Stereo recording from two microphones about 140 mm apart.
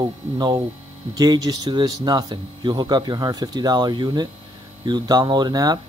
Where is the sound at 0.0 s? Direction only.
30° right (ahead or behind).